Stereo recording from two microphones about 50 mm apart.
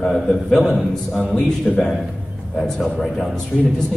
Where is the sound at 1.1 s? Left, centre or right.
Centre.